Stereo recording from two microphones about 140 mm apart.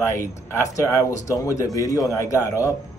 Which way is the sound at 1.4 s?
25° left (ahead or behind).